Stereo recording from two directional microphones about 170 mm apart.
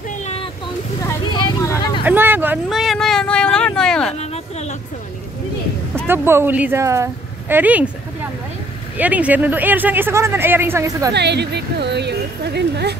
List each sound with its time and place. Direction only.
0.2 s vehicle: 35° left (ahead or behind)
1.0 s vehicle: 20° left (ahead or behind)
2.0 s vehicle: 10° right (ahead or behind); by 4.1 s 5° left (ahead or behind)
4.2 s a sound: 40° left (ahead or behind)
6.0 s speech: 15° right (ahead or behind)
8.9 s speech: 10° right (ahead or behind)
11.1 s a woman's voice: 85° right